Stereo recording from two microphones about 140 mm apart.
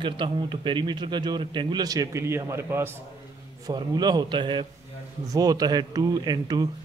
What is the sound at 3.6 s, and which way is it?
A man's voice, 30° right (ahead or behind).